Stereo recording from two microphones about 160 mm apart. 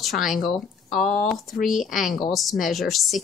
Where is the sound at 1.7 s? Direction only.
Centre (ahead or behind).